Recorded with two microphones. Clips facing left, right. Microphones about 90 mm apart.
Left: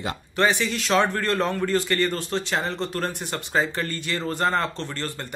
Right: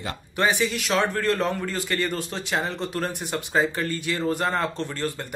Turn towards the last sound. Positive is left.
turn(degrees=-10)  # may be behind; listen again after turning